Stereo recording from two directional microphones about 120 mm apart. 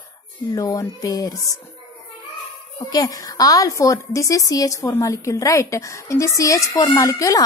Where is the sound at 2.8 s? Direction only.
30° left (ahead or behind).